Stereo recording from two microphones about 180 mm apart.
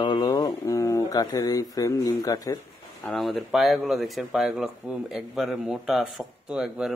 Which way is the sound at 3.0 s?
Centre (ahead or behind).